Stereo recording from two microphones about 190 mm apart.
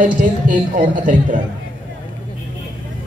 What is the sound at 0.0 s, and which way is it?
A man's voice, 45° right (ahead or behind).